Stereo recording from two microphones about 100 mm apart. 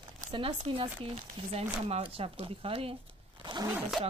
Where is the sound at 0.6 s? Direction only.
65° right (ahead or behind); by 1.6 s 85° right.